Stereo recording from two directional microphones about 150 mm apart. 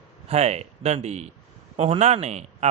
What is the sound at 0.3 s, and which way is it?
A man's voice, 45° right (ahead or behind).